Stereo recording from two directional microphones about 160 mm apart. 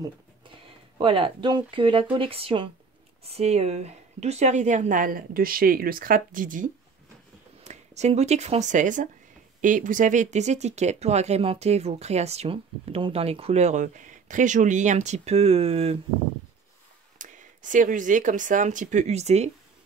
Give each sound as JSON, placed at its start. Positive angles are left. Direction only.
{"t": 0.0, "sound": "a sound", "side_deg": -30}
{"t": 2.1, "sound": "speech", "side_deg": -35}
{"t": 7.6, "sound": "speech", "side_deg": -45}
{"t": 17.2, "sound": "speech", "side_deg": -55}